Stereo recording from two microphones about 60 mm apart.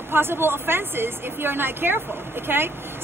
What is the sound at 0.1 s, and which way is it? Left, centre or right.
Speech, right.